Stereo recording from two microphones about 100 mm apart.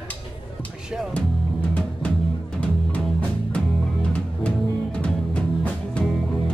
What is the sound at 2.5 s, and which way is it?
Music, 15° left (ahead or behind).